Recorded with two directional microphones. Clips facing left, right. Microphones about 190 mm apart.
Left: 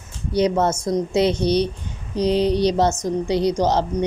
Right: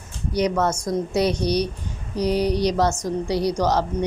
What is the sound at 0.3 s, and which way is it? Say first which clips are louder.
Speech: left 3 dB; 25° left (ahead or behind).